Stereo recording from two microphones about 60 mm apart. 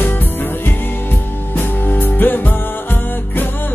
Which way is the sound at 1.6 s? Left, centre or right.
Left.